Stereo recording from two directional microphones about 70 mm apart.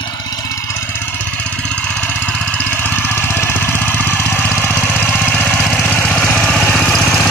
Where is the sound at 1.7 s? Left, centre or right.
Centre.